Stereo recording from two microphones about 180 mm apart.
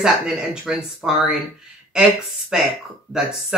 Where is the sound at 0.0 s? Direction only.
5° right (ahead or behind).